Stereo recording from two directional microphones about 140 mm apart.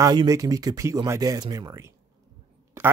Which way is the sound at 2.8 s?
20° right (ahead or behind).